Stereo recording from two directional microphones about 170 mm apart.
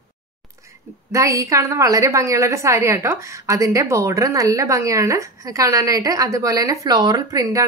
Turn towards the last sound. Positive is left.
turn(degrees=-20)  # may be behind; listen again after turning